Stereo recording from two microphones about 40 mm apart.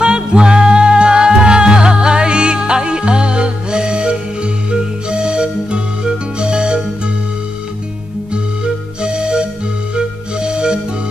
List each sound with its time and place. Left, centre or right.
0.0 s music: right
9.0 s music: right